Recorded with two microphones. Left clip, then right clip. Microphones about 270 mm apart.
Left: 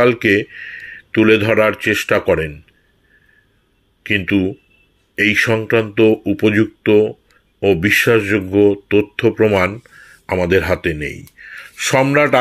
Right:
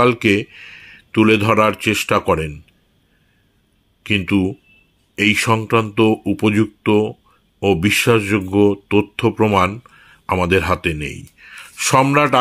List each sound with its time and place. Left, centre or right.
0.0 s speech: centre
4.0 s speech: centre